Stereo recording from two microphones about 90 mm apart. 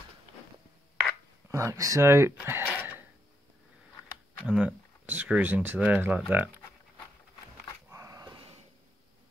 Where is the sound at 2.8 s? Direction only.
20° right (ahead or behind).